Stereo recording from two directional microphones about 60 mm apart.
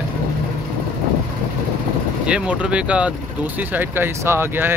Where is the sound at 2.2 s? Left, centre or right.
Centre.